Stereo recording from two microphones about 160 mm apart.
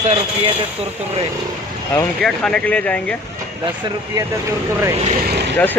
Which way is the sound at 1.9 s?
5° left (ahead or behind).